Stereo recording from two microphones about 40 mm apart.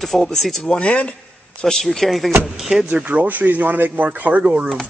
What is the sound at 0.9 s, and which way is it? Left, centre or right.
Speech, left.